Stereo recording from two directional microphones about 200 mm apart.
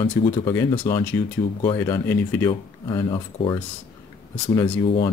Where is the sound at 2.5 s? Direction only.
20° left (ahead or behind).